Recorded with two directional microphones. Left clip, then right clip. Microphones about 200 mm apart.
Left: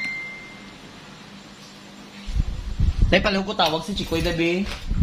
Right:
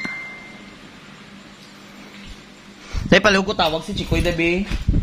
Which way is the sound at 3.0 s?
55° right (ahead or behind).